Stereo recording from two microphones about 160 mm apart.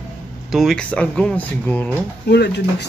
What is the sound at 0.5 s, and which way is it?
Speech, centre (ahead or behind).